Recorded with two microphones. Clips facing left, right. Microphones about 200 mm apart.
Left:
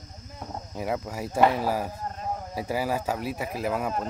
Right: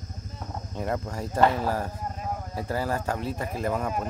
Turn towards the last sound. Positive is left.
turn(degrees=5)  # may be behind; listen again after turning